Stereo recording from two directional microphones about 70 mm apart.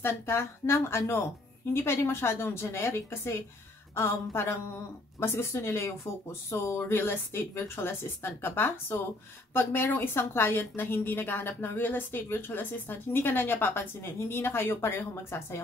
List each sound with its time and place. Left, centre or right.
0.0 s a woman's voice: left